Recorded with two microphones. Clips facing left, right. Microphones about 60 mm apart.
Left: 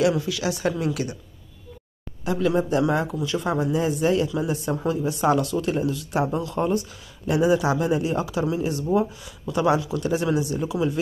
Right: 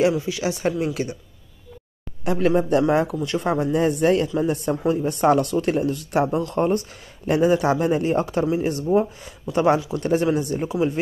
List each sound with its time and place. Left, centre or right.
0.2 s speech: right
2.2 s speech: right